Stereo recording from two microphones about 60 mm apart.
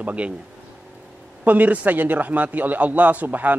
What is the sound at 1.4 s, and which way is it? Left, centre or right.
A man's voice, right.